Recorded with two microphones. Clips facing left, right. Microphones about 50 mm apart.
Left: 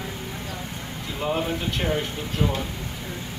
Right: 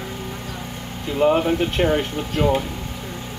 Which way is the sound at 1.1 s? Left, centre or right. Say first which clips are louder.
Right 9 dB; right.